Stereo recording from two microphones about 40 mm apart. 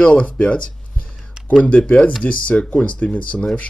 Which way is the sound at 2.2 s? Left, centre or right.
Left.